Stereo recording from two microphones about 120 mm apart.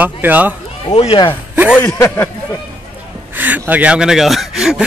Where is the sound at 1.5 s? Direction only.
10° right (ahead or behind).